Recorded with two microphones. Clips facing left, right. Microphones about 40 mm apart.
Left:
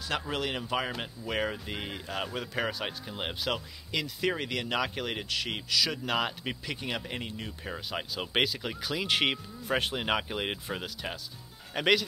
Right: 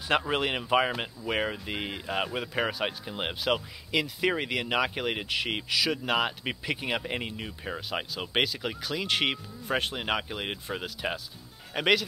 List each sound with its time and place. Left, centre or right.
0.3 s speech: right
5.9 s speech: centre
8.1 s speech: centre